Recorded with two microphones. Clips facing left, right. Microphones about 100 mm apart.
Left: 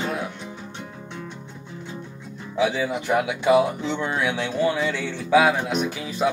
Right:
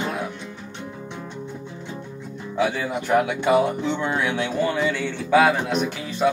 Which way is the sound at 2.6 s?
Centre (ahead or behind).